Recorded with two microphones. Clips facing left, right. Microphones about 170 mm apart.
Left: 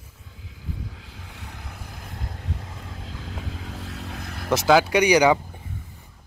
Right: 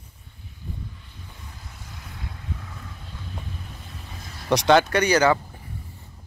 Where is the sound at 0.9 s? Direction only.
90° left; by 2.5 s 45° left (ahead or behind).